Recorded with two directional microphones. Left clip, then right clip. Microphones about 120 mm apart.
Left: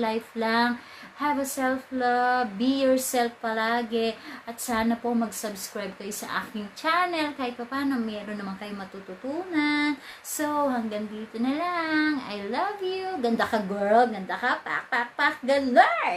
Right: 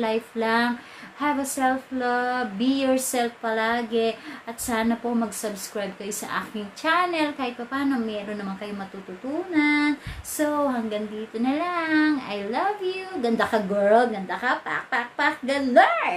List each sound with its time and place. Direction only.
0.0 s a woman's voice: 5° left (ahead or behind)